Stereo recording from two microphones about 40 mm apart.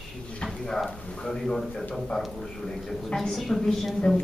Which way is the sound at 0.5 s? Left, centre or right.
Centre.